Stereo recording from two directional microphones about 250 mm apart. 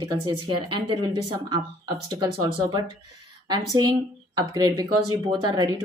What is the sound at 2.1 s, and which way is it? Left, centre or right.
Speech, centre.